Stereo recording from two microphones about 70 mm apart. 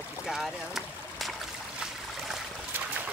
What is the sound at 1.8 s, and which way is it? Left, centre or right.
Stream, centre.